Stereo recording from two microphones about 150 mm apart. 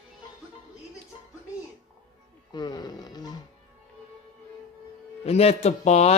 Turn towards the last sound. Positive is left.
turn(degrees=45)  # may be behind; listen again after turning